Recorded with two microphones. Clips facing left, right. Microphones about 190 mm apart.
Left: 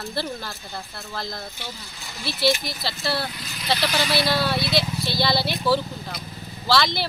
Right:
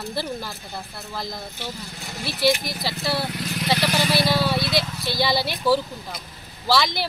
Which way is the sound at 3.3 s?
65° right (ahead or behind).